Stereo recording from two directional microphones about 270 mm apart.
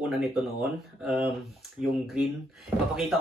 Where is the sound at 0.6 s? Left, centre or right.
Centre.